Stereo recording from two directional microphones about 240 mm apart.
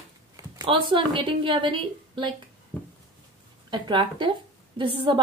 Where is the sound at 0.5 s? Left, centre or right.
Centre.